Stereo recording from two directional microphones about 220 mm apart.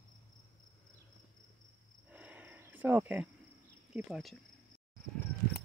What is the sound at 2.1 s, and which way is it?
Cricket, 5° right (ahead or behind).